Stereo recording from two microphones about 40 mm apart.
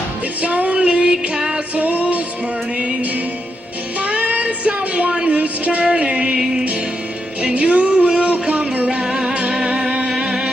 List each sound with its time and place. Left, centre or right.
0.4 s music: right
1.8 s music: right
4.0 s child singing: right
7.4 s a sound: right
9.0 s music: right